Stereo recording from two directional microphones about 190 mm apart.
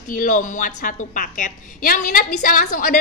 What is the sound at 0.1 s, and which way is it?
A woman's voice, 45° left (ahead or behind).